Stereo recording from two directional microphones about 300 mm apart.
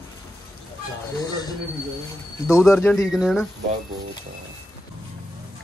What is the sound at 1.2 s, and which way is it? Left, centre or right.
Speech, centre.